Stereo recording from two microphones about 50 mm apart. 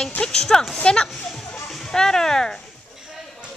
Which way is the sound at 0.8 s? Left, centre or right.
Centre.